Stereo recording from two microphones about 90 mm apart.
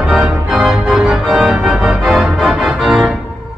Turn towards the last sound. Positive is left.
turn(degrees=0)  # may be behind; listen again after turning